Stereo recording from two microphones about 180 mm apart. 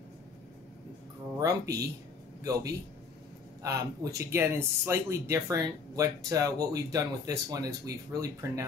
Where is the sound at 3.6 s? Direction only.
20° right (ahead or behind).